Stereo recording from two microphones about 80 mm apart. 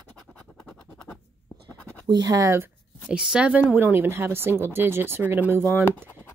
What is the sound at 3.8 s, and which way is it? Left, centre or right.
Speech, right.